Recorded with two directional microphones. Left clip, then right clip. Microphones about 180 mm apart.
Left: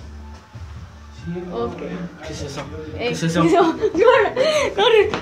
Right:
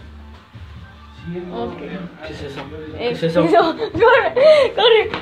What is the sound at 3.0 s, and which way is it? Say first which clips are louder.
A man's voice: right 2 dB; 15° right (ahead or behind).